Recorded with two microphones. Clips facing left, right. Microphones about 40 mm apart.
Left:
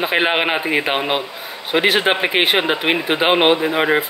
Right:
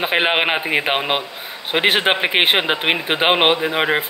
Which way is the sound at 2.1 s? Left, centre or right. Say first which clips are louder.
Even; centre.